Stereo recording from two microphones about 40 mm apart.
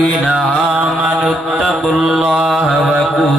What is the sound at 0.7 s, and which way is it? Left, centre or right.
Mantra, right.